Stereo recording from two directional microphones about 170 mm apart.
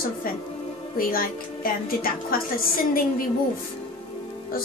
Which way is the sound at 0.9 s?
60° left (ahead or behind).